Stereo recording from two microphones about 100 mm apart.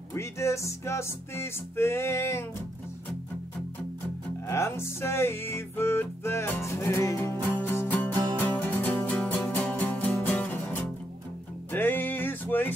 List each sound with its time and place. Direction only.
0.1 s music: 30° left (ahead or behind)
4.5 s music: 25° left (ahead or behind)